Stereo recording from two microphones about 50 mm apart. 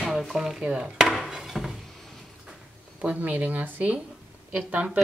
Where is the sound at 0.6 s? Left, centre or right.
Centre.